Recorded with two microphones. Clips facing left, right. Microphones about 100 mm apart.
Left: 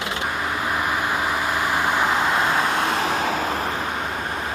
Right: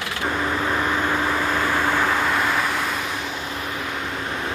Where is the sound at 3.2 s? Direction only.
45° left (ahead or behind).